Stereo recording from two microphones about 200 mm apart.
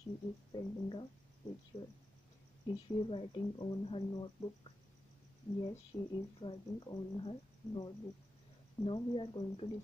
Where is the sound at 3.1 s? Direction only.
25° left (ahead or behind).